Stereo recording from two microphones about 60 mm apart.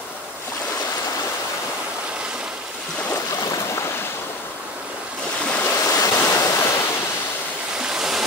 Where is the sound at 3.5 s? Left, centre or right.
Left.